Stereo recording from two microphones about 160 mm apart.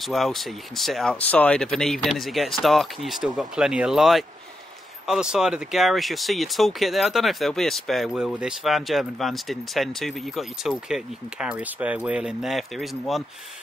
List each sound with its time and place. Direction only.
0.0 s speech: centre (ahead or behind)